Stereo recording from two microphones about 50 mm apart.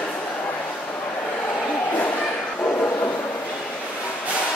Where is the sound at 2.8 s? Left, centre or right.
Left.